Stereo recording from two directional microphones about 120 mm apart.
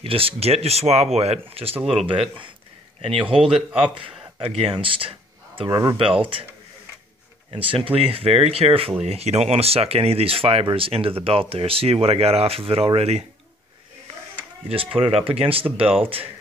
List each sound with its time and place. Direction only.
0.0 s speech: 50° right (ahead or behind)
5.7 s speech: 30° right (ahead or behind)
7.5 s speech: 50° right (ahead or behind)
15.0 s speech: 55° right (ahead or behind)